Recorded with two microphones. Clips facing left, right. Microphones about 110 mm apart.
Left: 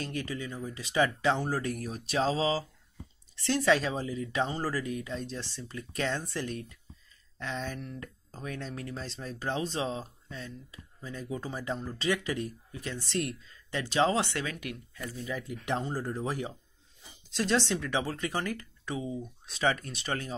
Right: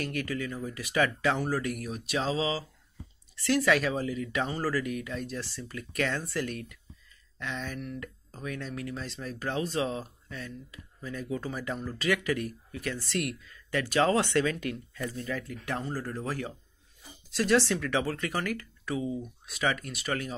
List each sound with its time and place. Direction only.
0.0 s speech: 25° left (ahead or behind)